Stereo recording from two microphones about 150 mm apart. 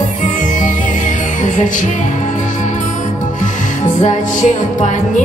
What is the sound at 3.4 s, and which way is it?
Music, 55° left (ahead or behind).